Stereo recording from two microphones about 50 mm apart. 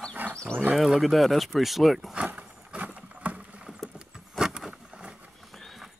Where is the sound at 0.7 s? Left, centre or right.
Centre.